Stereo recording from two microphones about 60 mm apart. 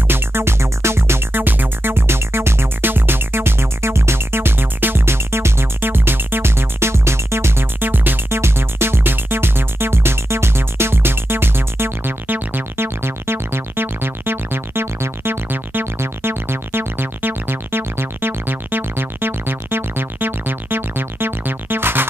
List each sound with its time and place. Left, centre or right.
0.1 s music: right
8.4 s music: right